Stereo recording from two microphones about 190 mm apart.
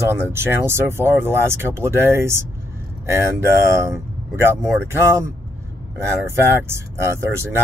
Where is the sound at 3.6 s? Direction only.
15° right (ahead or behind).